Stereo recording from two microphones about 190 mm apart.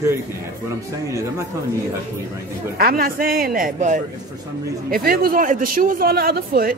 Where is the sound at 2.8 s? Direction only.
50° right (ahead or behind).